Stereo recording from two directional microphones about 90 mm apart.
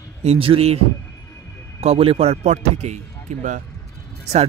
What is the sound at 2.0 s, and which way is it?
Speech, 90° right.